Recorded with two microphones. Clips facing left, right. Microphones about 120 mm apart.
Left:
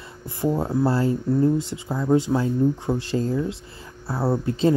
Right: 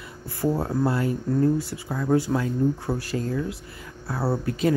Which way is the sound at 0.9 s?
30° left (ahead or behind).